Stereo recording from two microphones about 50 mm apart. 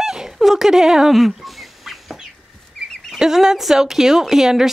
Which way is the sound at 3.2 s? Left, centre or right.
Centre.